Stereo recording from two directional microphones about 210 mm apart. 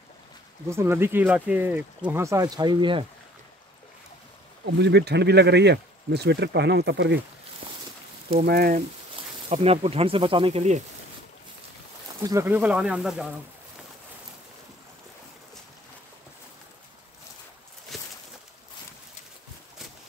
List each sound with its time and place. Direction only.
0.7 s speech: 10° right (ahead or behind)
4.6 s speech: 55° right (ahead or behind)
8.5 s speech: 45° right (ahead or behind)
9.5 s speech: 30° right (ahead or behind)
12.2 s speech: 15° right (ahead or behind)
17.9 s a sound: centre (ahead or behind)